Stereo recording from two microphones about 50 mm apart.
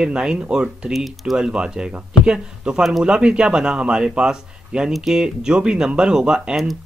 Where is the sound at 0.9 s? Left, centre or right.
Centre.